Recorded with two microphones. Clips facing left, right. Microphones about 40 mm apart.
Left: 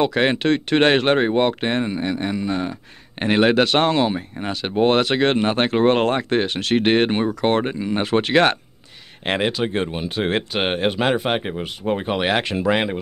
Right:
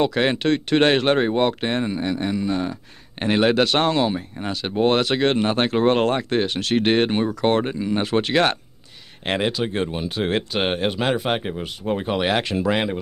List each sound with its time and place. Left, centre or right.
0.0 s speech: left